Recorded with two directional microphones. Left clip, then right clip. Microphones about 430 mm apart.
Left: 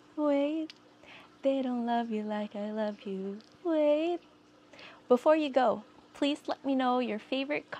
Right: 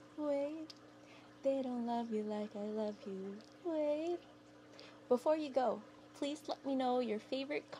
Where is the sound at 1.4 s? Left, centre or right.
Left.